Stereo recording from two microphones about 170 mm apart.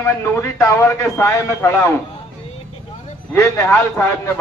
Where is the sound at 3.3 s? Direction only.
15° left (ahead or behind).